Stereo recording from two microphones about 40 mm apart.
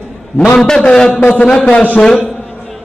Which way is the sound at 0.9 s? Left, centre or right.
Left.